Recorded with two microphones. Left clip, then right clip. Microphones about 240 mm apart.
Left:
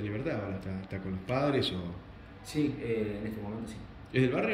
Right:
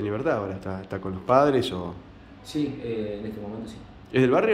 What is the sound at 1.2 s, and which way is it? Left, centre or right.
Speech, centre.